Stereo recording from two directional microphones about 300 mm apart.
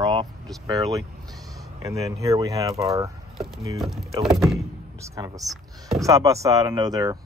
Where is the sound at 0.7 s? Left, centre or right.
Centre.